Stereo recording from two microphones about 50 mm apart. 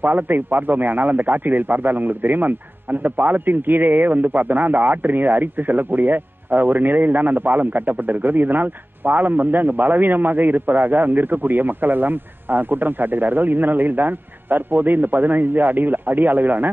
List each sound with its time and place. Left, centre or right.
0.0 s a man's voice: right